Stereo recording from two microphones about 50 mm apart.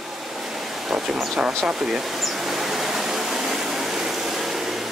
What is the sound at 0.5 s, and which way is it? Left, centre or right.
Speech, centre.